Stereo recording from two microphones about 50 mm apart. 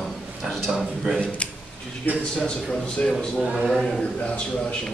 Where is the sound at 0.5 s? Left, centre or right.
Centre.